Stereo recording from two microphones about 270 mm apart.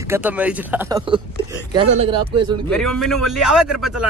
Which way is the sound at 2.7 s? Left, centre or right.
Centre.